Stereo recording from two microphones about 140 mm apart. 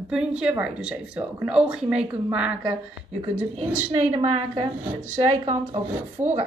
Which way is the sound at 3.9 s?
50° right (ahead or behind).